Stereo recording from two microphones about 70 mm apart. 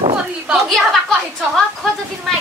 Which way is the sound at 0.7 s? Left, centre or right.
Centre.